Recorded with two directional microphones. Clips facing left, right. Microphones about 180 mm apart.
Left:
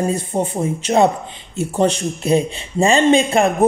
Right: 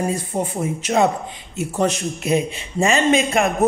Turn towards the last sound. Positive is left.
turn(degrees=30)  # may be behind; listen again after turning